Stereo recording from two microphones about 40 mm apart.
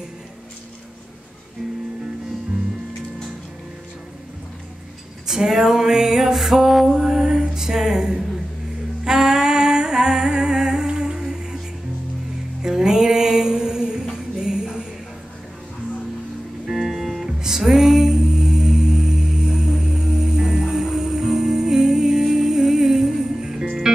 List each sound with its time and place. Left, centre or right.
5.2 s music: centre
9.0 s a sound: centre
12.6 s music: centre
16.6 s music: centre